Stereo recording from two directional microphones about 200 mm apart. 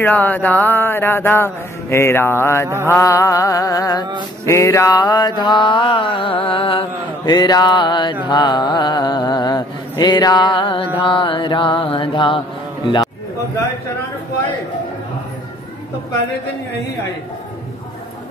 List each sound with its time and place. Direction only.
0.0 s speech: 10° left (ahead or behind)
4.5 s mantra: 15° left (ahead or behind)